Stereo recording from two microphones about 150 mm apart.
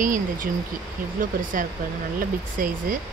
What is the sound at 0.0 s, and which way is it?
Speech, 60° right (ahead or behind).